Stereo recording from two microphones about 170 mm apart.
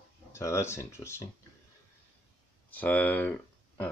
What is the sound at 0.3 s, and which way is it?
Speech, 15° left (ahead or behind).